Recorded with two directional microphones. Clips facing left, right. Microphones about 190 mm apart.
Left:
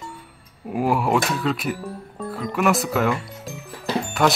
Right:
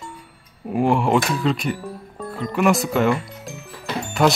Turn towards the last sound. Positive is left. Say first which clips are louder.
# right 1 dB
turn(degrees=0)  # may be behind; listen again after turning